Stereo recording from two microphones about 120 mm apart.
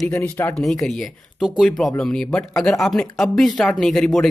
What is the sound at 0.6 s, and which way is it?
Speech, centre (ahead or behind).